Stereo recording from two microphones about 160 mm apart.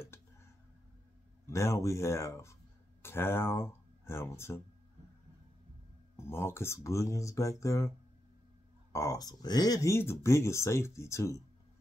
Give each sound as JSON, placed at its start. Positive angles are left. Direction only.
{"t": 1.5, "sound": "speech", "side_deg": 20}
{"t": 6.1, "sound": "speech", "side_deg": 15}
{"t": 8.9, "sound": "speech", "side_deg": 20}